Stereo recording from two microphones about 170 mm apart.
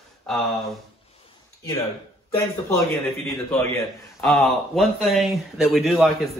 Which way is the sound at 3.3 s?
5° left (ahead or behind).